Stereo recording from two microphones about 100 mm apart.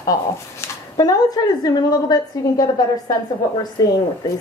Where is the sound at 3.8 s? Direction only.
35° left (ahead or behind).